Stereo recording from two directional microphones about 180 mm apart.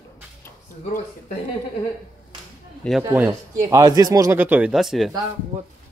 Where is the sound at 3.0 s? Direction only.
10° right (ahead or behind).